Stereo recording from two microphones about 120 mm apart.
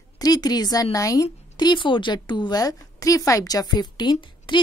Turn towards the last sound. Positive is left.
turn(degrees=40)  # may be behind; listen again after turning